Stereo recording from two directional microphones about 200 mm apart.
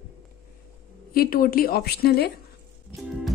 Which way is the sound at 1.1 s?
45° left (ahead or behind).